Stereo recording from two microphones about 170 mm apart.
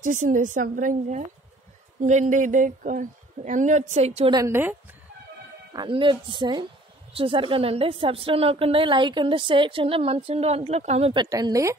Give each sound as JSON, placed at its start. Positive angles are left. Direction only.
{"t": 0.0, "sound": "speech", "side_deg": -50}
{"t": 4.3, "sound": "a woman's voice", "side_deg": -15}
{"t": 5.7, "sound": "a woman's voice", "side_deg": -25}
{"t": 11.2, "sound": "speech", "side_deg": -20}